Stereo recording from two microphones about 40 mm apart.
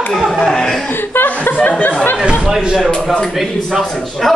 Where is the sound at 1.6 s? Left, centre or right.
Left.